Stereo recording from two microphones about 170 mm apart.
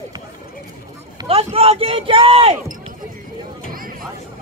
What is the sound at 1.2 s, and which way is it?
Speech, 35° right (ahead or behind).